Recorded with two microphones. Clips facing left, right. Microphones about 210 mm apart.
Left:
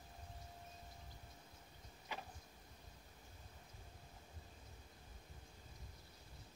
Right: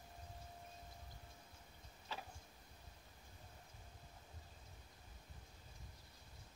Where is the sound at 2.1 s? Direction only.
15° left (ahead or behind).